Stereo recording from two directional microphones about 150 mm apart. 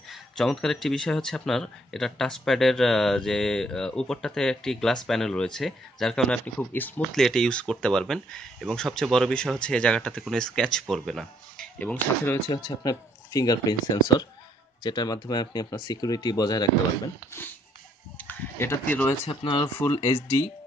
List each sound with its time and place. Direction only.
0.1 s speech: 5° left (ahead or behind)
12.5 s speech: 25° left (ahead or behind)
18.1 s speech: 15° left (ahead or behind)
19.2 s speech: 30° left (ahead or behind)
19.8 s speech: 20° left (ahead or behind)